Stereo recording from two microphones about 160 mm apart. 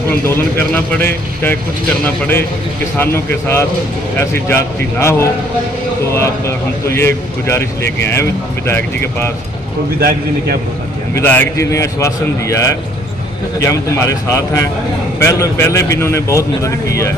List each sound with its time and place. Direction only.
0.3 s speech: 10° left (ahead or behind)
3.3 s speech: 15° left (ahead or behind)
9.9 s a man's voice: 70° right (ahead or behind)
11.1 s speech: 15° left (ahead or behind)